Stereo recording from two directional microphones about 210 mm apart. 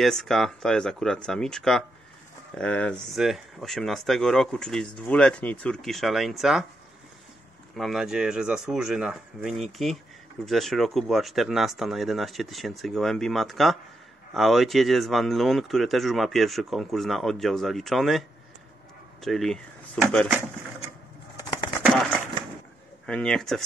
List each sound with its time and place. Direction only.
0.0 s speech: centre (ahead or behind)
7.7 s speech: centre (ahead or behind)
19.2 s speech: centre (ahead or behind)
21.4 s a sound: 20° left (ahead or behind)
23.0 s speech: 5° left (ahead or behind)